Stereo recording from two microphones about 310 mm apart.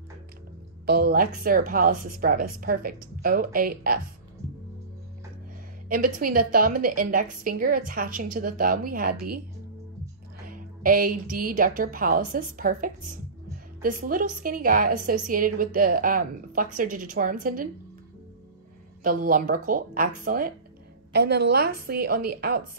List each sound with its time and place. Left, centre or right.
0.8 s a woman's voice: right
5.9 s a woman's voice: right
10.5 s a woman's voice: right
19.0 s a woman's voice: right